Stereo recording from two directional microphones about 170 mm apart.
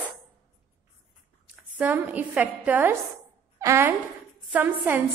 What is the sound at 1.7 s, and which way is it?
A woman's voice, 10° right (ahead or behind).